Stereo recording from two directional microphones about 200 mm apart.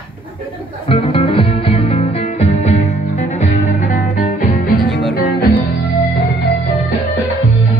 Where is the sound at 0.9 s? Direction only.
25° left (ahead or behind).